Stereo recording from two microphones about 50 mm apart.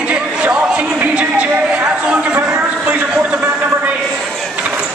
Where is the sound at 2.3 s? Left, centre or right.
Right.